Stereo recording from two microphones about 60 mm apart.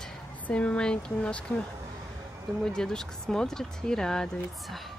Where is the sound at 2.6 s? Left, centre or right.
Centre.